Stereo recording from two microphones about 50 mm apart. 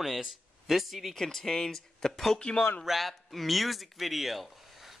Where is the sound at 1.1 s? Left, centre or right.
Centre.